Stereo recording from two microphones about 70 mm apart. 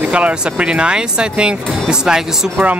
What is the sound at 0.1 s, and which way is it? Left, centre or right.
Speech, centre.